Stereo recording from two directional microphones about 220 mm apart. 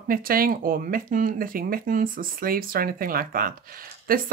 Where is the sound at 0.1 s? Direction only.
40° right (ahead or behind).